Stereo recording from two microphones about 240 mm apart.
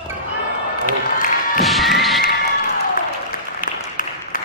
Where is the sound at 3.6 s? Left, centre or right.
Left.